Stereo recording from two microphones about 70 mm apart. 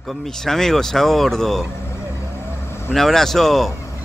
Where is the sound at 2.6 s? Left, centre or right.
Left.